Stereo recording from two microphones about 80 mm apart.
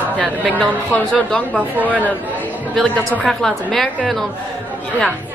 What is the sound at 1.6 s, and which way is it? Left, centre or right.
Speech, centre.